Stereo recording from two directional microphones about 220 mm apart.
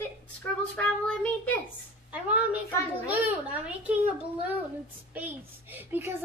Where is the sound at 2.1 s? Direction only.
5° right (ahead or behind).